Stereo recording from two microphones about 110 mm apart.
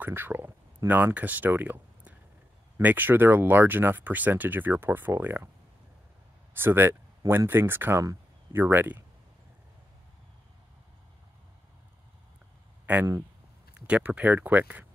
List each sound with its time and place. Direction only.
0.0 s speech: 20° right (ahead or behind)
6.5 s speech: 20° right (ahead or behind)
13.7 s speech: 10° right (ahead or behind)